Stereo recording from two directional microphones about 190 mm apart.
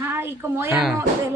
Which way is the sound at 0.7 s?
Centre (ahead or behind).